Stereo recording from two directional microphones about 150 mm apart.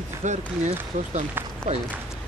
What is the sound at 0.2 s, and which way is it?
Speech, 55° right (ahead or behind).